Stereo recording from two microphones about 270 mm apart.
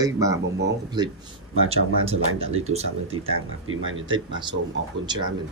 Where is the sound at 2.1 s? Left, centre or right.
Right.